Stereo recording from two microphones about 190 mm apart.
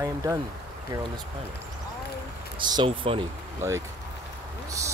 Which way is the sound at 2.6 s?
25° right (ahead or behind).